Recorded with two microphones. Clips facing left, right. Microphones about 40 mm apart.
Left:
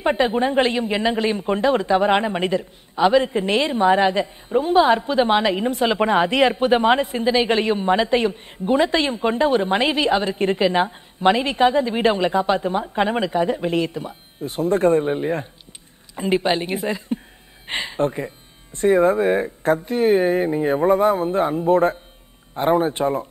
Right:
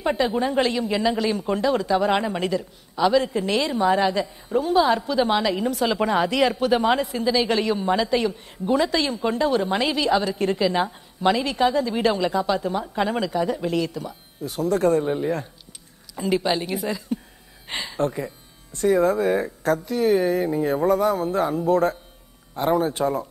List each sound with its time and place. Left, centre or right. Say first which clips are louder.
0.0 s speech: left 3 dB; left